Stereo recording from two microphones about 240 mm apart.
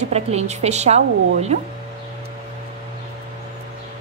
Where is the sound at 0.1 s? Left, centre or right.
Right.